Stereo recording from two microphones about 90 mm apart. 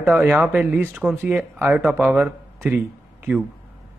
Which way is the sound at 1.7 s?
15° right (ahead or behind).